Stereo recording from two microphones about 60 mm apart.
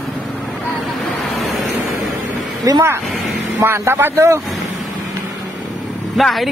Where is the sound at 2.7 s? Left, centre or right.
Right.